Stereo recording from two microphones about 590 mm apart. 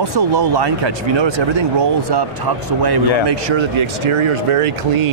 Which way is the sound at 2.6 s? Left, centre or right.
Right.